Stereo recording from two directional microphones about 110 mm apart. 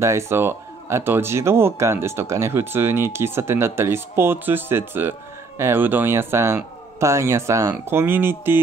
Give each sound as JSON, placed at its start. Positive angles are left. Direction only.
{"t": 0.0, "sound": "speech", "side_deg": -25}